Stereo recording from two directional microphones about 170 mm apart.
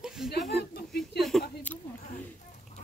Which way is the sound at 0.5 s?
70° left (ahead or behind).